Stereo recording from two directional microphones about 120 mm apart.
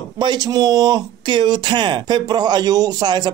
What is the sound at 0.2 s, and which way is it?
Speech, 35° right (ahead or behind).